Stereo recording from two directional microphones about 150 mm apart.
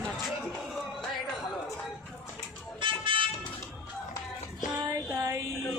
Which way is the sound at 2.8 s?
35° right (ahead or behind).